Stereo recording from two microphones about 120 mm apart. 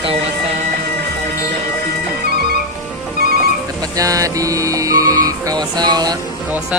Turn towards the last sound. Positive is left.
turn(degrees=-35)  # may be behind; listen again after turning